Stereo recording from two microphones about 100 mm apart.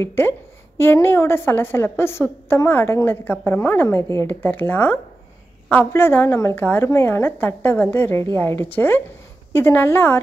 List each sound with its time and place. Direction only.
0.0 s a woman's voice: 25° left (ahead or behind)